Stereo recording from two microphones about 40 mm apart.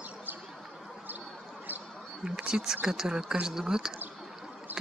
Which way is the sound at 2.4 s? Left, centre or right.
Centre.